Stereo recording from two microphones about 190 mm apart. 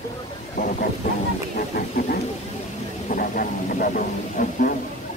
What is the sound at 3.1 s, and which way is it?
Speech, 45° left (ahead or behind).